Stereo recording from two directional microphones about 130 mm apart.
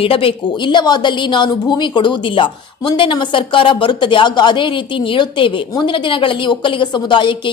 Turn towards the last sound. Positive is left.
turn(degrees=40)  # may be behind; listen again after turning